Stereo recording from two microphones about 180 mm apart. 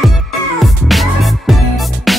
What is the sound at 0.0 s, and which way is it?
Music, centre (ahead or behind).